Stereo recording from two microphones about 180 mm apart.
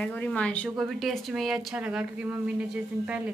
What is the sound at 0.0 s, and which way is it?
A woman's voice, 5° left (ahead or behind).